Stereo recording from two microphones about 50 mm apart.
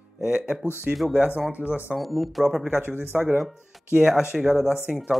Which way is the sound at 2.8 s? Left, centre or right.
Right.